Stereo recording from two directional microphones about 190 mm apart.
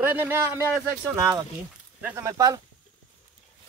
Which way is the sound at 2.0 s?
15° right (ahead or behind).